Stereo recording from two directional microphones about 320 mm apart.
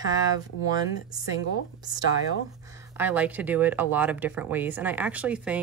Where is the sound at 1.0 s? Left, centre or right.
Left.